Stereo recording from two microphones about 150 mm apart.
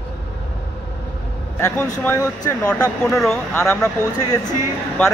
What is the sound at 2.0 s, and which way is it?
Speech, 20° left (ahead or behind).